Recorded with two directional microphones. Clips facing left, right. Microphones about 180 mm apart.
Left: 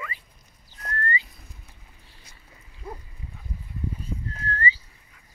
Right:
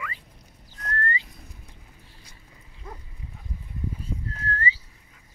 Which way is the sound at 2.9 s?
30° left (ahead or behind).